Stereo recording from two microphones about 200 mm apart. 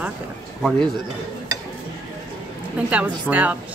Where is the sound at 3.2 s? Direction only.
10° right (ahead or behind).